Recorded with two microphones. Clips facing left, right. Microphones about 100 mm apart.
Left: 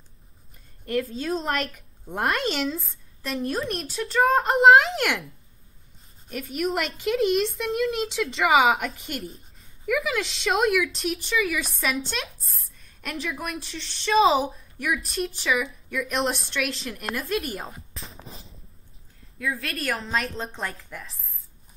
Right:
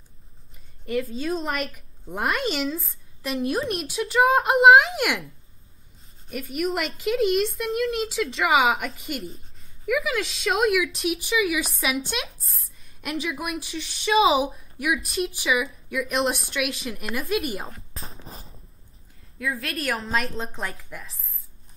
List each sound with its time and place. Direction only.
0.8 s a woman's voice: centre (ahead or behind)
17.9 s a sound: 35° right (ahead or behind)
19.3 s a woman's voice: centre (ahead or behind)